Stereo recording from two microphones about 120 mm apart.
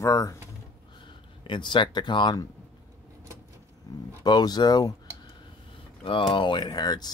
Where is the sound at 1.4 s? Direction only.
40° left (ahead or behind).